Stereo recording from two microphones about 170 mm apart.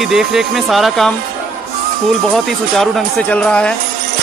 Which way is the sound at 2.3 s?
Centre (ahead or behind).